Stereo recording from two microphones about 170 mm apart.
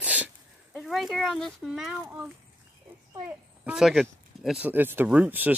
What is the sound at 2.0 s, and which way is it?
Speech, 15° right (ahead or behind).